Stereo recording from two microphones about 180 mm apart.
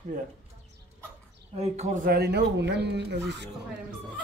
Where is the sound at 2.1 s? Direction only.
65° right (ahead or behind).